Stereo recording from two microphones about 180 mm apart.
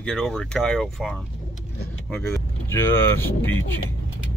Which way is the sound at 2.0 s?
15° left (ahead or behind).